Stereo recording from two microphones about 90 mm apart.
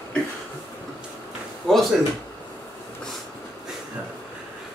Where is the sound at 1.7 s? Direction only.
5° left (ahead or behind).